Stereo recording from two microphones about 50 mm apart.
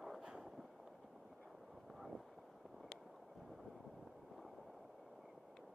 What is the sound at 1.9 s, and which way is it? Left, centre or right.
Vehicle, centre.